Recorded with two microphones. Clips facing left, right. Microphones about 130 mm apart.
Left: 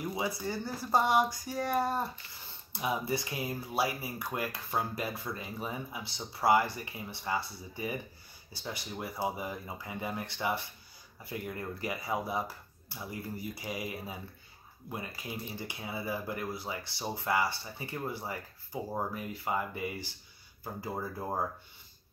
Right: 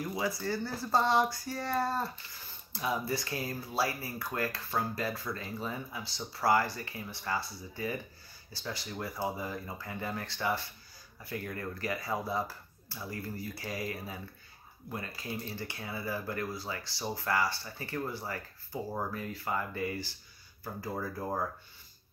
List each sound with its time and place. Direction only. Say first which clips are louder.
0.0 s speech: even; 20° left (ahead or behind)